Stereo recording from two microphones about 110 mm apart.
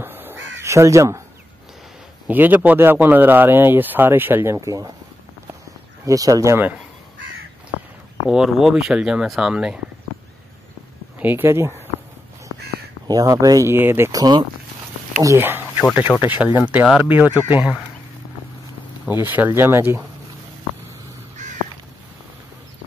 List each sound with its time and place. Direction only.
0.0 s crow: 20° right (ahead or behind)
2.2 s a man's voice: 15° right (ahead or behind)
4.6 s speech: 30° right (ahead or behind)
6.0 s speech: 30° right (ahead or behind)
8.3 s speech: 5° right (ahead or behind)
11.1 s speech: 20° right (ahead or behind)
13.0 s speech: 35° right (ahead or behind)
14.1 s speech: 40° right (ahead or behind)
15.2 s a man's voice: 20° right (ahead or behind)
19.0 s speech: 15° right (ahead or behind)